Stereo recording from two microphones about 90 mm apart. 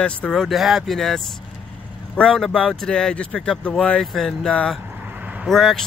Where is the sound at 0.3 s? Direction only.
Centre (ahead or behind).